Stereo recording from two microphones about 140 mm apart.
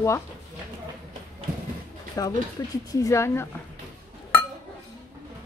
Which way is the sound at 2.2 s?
25° left (ahead or behind).